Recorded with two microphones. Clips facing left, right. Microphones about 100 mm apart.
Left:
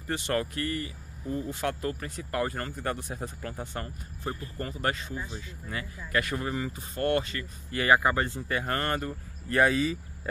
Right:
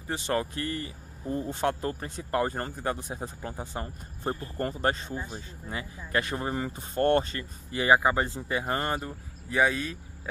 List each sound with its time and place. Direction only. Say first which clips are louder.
0.1 s speech: even; 20° right (ahead or behind)
4.2 s speech: right 4 dB; 35° right (ahead or behind)
5.7 s speech: right 1 dB; 25° right (ahead or behind)
6.5 s speech: right 2 dB; 35° right (ahead or behind)
7.7 s speech: right 1 dB; 20° right (ahead or behind); by 9.9 s centre (ahead or behind)